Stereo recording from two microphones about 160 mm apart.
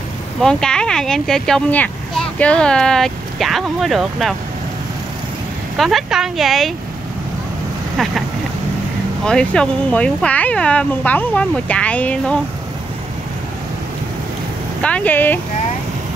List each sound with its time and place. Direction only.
0.4 s speech: 5° left (ahead or behind)
5.8 s speech: centre (ahead or behind)
9.2 s speech: 5° left (ahead or behind)
14.8 s speech: 10° left (ahead or behind)